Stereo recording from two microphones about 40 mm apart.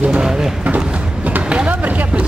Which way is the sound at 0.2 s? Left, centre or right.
Centre.